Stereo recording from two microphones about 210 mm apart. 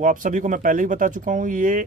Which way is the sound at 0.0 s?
40° right (ahead or behind).